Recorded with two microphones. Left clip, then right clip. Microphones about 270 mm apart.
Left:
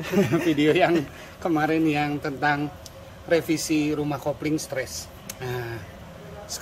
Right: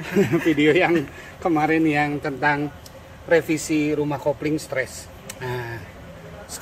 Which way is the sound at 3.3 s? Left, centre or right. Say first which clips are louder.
Right 3 dB; centre.